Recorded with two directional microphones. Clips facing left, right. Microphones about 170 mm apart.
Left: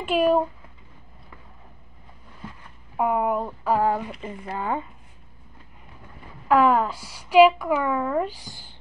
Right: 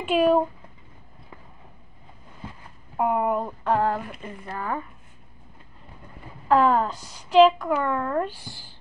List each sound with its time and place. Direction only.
0.0 s speech: centre (ahead or behind)
3.0 s a woman's voice: centre (ahead or behind)
4.2 s speech: 20° left (ahead or behind)
6.5 s a woman's voice: 10° left (ahead or behind)